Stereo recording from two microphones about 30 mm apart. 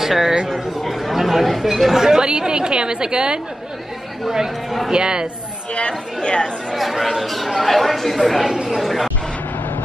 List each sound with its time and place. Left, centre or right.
0.0 s speech: centre
2.0 s a woman's voice: right
4.9 s a woman's voice: right
5.8 s speech: left
6.7 s speech: centre